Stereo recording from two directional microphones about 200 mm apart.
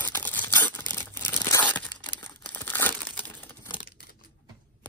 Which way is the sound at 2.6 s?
10° left (ahead or behind).